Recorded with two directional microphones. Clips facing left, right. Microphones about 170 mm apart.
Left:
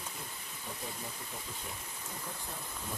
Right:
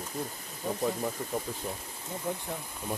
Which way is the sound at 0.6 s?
70° right (ahead or behind).